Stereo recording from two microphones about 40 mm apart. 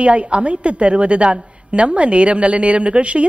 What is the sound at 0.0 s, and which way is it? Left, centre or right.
A woman's voice, right.